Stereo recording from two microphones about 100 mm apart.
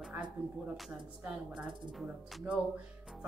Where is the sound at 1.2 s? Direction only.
10° right (ahead or behind).